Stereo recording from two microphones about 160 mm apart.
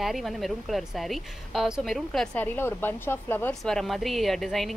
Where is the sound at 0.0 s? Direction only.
Centre (ahead or behind).